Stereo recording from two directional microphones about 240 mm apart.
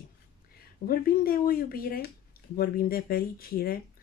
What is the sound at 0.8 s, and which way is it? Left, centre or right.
Speech, left.